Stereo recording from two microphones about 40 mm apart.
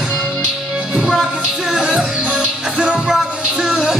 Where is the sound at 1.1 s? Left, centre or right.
Centre.